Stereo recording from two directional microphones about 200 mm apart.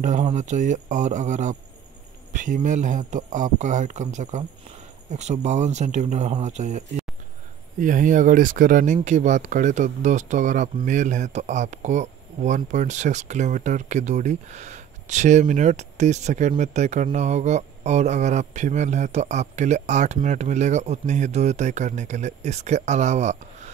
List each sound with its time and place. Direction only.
0.0 s speech: 35° right (ahead or behind)
7.8 s speech: 40° right (ahead or behind)